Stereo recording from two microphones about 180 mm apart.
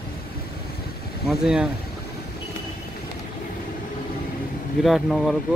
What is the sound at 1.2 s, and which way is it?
Speech, 5° right (ahead or behind).